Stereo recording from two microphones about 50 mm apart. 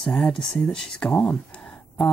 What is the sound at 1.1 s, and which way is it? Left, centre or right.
Speech, left.